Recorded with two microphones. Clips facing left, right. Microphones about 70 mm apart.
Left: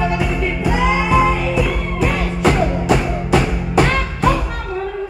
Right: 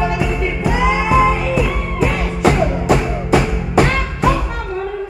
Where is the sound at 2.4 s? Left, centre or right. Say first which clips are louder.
Right 2 dB; right.